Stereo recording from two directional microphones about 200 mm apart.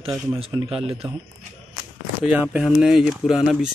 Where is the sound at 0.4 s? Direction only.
30° right (ahead or behind).